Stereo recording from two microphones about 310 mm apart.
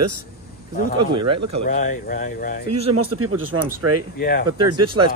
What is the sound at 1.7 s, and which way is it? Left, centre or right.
Speech, left.